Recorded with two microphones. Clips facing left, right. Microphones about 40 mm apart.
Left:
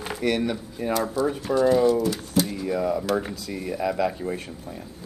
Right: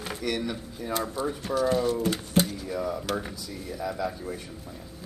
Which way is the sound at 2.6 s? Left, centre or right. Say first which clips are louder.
Left 6 dB; left.